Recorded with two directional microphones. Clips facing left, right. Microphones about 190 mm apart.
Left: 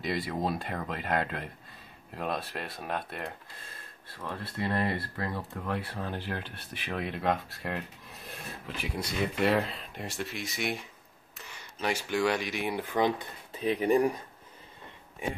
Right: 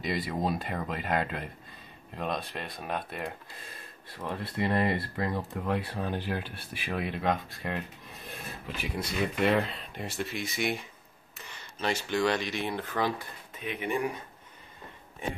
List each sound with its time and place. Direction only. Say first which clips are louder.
0.0 s speech: right 1 dB; centre (ahead or behind)
4.2 s speech: right 3 dB; 15° right (ahead or behind); by 13.3 s 15° left (ahead or behind)
13.5 s speech: left 7 dB; 35° left (ahead or behind)